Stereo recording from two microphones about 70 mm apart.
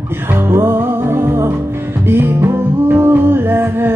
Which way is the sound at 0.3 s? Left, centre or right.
Right.